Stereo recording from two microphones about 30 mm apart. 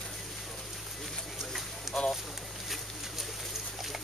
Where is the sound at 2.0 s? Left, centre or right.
Left.